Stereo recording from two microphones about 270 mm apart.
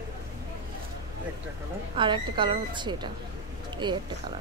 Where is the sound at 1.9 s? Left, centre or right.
Centre.